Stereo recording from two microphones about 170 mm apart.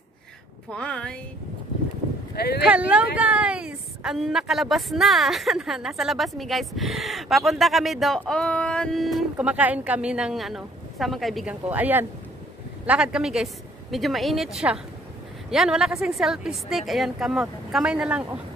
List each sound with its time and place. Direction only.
0.7 s a woman's voice: 5° left (ahead or behind)
2.3 s speech: 70° left (ahead or behind)
2.6 s a woman's voice: 10° right (ahead or behind)